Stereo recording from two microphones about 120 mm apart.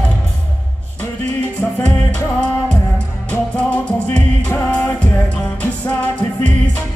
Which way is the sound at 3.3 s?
10° left (ahead or behind).